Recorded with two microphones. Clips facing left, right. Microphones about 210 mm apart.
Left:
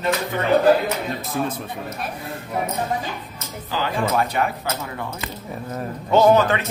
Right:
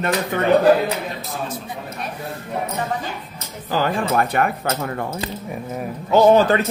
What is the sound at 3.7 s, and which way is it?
Speech, 50° right (ahead or behind).